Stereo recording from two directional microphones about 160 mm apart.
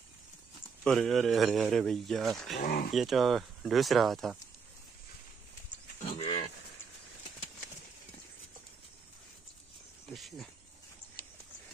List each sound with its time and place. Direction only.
0.8 s speech: centre (ahead or behind)
2.6 s speech: 65° left (ahead or behind)
2.9 s speech: centre (ahead or behind)
5.9 s livestock: 40° left (ahead or behind)
10.0 s speech: centre (ahead or behind)